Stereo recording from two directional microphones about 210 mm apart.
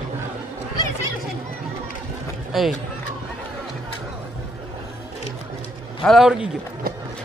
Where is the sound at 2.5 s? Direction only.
Centre (ahead or behind).